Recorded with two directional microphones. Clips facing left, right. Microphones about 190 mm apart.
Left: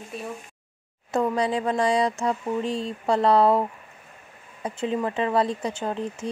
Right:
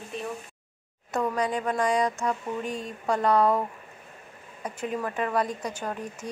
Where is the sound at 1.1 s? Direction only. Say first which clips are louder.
Left 4 dB; 30° left (ahead or behind).